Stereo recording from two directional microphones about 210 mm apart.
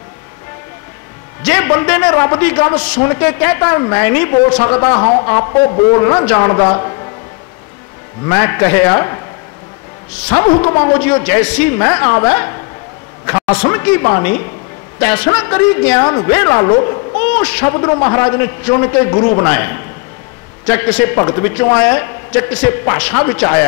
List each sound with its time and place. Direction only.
1.5 s a man's voice: 15° left (ahead or behind)
8.3 s a man's voice: 15° left (ahead or behind)
10.3 s a man's voice: 20° left (ahead or behind)
13.7 s a man's voice: 15° left (ahead or behind)
17.7 s a man's voice: 20° left (ahead or behind)